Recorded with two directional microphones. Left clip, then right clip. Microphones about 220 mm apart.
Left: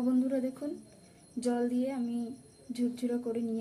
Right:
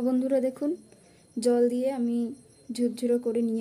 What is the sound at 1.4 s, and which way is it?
Speech, 45° right (ahead or behind).